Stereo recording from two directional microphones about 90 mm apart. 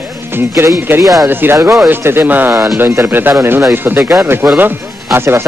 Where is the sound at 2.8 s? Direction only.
25° right (ahead or behind).